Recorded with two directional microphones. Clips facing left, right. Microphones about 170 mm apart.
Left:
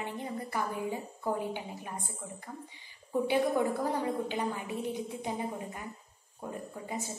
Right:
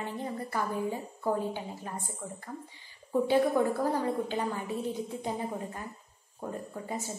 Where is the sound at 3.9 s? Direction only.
15° left (ahead or behind).